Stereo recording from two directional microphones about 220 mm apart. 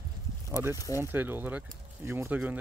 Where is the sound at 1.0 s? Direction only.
10° right (ahead or behind).